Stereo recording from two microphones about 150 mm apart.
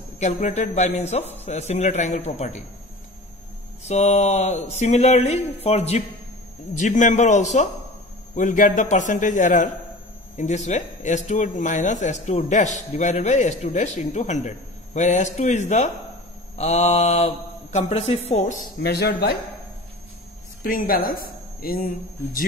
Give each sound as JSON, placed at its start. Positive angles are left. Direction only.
{"t": 0.2, "sound": "speech", "side_deg": 50}
{"t": 3.8, "sound": "speech", "side_deg": 50}
{"t": 6.8, "sound": "a man's voice", "side_deg": 55}
{"t": 18.8, "sound": "speech", "side_deg": 90}
{"t": 20.6, "sound": "speech", "side_deg": 70}